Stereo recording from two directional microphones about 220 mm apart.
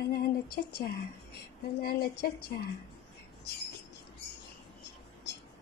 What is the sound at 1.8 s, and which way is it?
Speech, 45° left (ahead or behind).